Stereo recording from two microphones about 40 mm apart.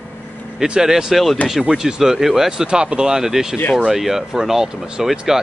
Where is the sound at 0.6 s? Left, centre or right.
Centre.